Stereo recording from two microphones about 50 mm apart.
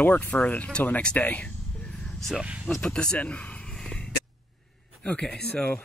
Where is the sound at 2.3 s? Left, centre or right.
Right.